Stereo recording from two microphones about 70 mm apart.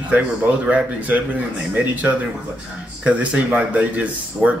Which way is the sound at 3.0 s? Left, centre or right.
Right.